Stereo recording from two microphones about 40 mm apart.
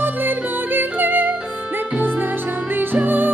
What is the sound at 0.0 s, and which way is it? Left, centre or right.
Music, right.